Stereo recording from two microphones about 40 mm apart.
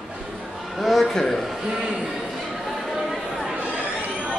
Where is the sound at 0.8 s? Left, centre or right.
Centre.